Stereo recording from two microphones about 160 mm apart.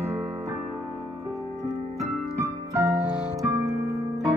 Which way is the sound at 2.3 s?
20° right (ahead or behind).